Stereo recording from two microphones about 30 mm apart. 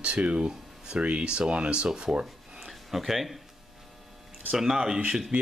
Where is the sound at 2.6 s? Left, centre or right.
Centre.